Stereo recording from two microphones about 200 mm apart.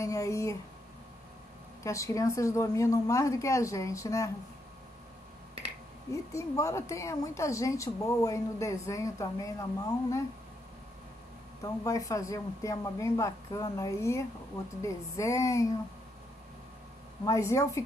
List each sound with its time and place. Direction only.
0.0 s speech: 15° left (ahead or behind)
1.8 s a woman's voice: 15° left (ahead or behind)
6.3 s a woman's voice: 15° left (ahead or behind)
11.6 s a woman's voice: 15° left (ahead or behind)
17.2 s a woman's voice: 15° left (ahead or behind)